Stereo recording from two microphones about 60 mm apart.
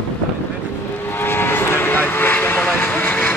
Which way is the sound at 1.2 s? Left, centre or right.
Left.